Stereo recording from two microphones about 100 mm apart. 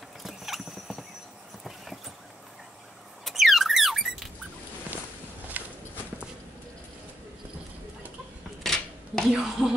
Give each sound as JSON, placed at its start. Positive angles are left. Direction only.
{"t": 0.2, "sound": "clip-clop", "side_deg": 0}
{"t": 3.3, "sound": "squeak", "side_deg": 0}
{"t": 5.5, "sound": "horse", "side_deg": -15}
{"t": 8.6, "sound": "dishes", "side_deg": 5}
{"t": 9.3, "sound": "speech", "side_deg": -5}